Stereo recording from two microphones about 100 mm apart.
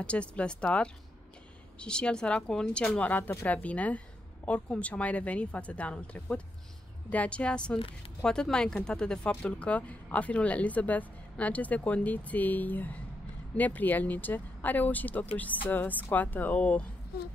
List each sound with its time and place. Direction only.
0.0 s speech: 10° left (ahead or behind)